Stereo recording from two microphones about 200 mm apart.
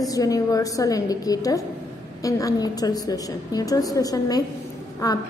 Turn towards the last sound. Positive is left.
turn(degrees=15)  # may be behind; listen again after turning